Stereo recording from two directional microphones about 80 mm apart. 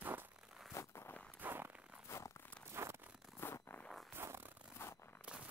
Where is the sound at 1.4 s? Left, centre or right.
Right.